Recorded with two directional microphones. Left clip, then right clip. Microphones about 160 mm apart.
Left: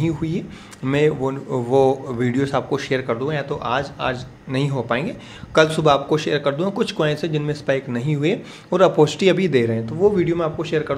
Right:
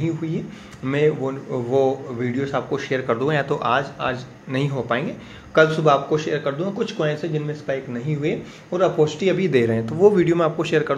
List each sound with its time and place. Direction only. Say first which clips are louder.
0.0 s a man's voice: left 2 dB; 25° left (ahead or behind)
3.1 s a man's voice: right 2 dB; 5° right (ahead or behind)
4.0 s a man's voice: left 1 dB; 10° left (ahead or behind)
5.5 s a man's voice: even; 25° left (ahead or behind)
9.5 s a man's voice: even; 5° left (ahead or behind)